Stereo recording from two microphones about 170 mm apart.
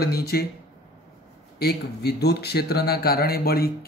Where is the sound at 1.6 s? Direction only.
70° left (ahead or behind).